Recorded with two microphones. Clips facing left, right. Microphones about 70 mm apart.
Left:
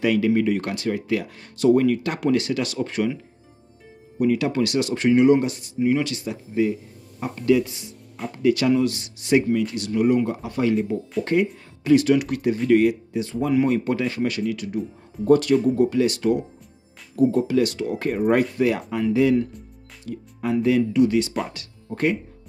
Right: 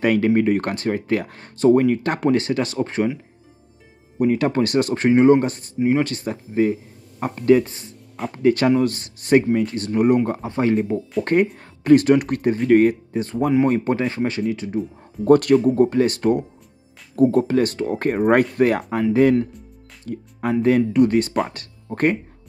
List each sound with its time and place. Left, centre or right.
0.0 s speech: right
4.2 s speech: right
15.2 s speech: right
20.1 s speech: right